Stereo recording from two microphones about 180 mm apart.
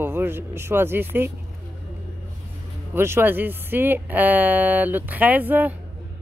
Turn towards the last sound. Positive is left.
turn(degrees=-10)  # may be behind; listen again after turning